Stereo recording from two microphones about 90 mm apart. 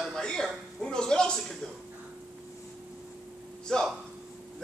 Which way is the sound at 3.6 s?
5° left (ahead or behind).